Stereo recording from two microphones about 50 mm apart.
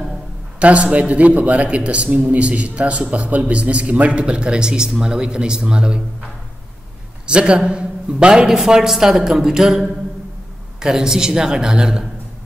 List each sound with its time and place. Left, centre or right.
0.6 s a man's voice: right
7.2 s a man's voice: centre